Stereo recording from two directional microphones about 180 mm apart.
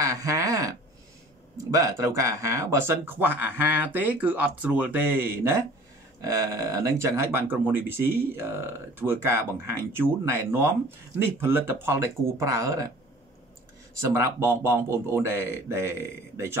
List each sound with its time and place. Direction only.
0.0 s a sound: 15° right (ahead or behind)
1.7 s speech: 15° right (ahead or behind)
14.1 s speech: 15° right (ahead or behind)